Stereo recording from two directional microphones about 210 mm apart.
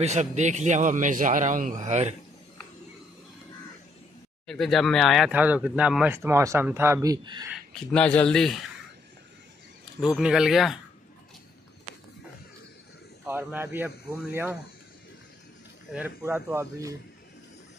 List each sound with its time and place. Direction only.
0.0 s a man's voice: 35° right (ahead or behind)
4.5 s speech: centre (ahead or behind); by 7.4 s 20° right (ahead or behind)
7.7 s a man's voice: 5° left (ahead or behind)
9.9 s a man's voice: centre (ahead or behind)
13.2 s speech: 10° right (ahead or behind)
15.9 s speech: 10° right (ahead or behind)